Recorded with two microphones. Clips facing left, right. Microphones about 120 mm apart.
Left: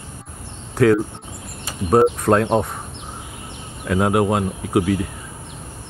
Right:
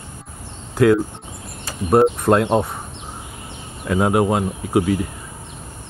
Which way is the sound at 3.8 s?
Centre (ahead or behind).